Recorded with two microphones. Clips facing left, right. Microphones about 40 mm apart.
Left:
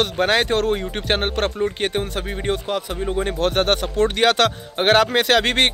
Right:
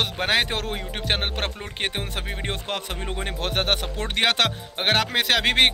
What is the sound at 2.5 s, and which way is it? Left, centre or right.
Speech, right.